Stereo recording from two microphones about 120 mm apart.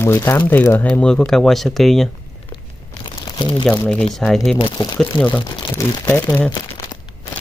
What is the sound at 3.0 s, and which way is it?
Crumpling, 40° left (ahead or behind).